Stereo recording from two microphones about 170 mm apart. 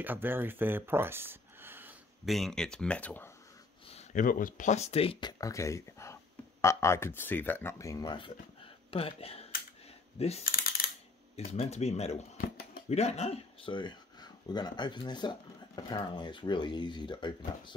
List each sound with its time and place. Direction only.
0.0 s speech: 10° right (ahead or behind)
2.2 s speech: centre (ahead or behind)
3.9 s speech: 50° left (ahead or behind); by 5.3 s 35° left (ahead or behind)
5.4 s speech: 15° left (ahead or behind); by 10.4 s 35° left (ahead or behind)
10.4 s speech: 60° left (ahead or behind)
11.3 s speech: 40° left (ahead or behind)